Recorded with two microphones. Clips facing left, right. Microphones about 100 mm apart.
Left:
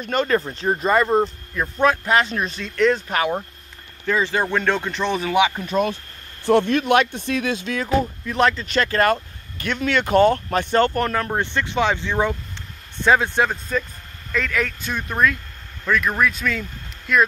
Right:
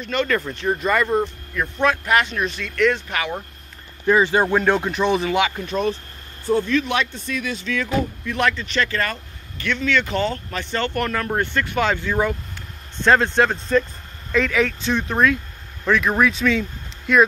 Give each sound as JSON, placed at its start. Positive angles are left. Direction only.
{"t": 0.0, "sound": "speech", "side_deg": 40}
{"t": 4.1, "sound": "speech", "side_deg": -15}
{"t": 5.7, "sound": "speech", "side_deg": 50}
{"t": 6.4, "sound": "speech", "side_deg": 70}
{"t": 7.6, "sound": "speech", "side_deg": 40}
{"t": 11.0, "sound": "speech", "side_deg": 30}
{"t": 11.2, "sound": "speech", "side_deg": 15}
{"t": 12.9, "sound": "speech", "side_deg": 10}